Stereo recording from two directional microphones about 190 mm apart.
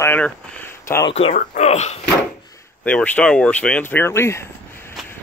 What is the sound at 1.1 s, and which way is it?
Speech, 35° left (ahead or behind).